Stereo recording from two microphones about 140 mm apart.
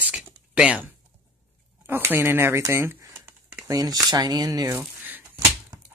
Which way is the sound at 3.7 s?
25° right (ahead or behind).